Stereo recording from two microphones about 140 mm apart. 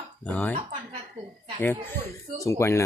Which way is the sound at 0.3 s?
10° left (ahead or behind).